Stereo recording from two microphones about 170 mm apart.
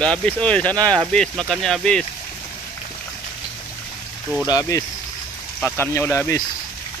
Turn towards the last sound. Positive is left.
turn(degrees=15)  # may be behind; listen again after turning